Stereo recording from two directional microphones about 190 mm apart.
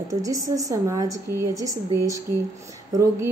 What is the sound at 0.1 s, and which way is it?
A woman's voice, 15° right (ahead or behind).